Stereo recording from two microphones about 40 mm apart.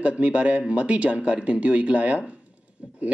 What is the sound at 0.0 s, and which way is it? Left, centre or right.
Speech, right.